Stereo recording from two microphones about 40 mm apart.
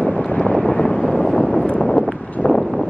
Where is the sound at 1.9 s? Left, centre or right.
Left.